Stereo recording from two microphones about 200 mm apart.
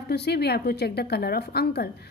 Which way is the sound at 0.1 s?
55° left (ahead or behind).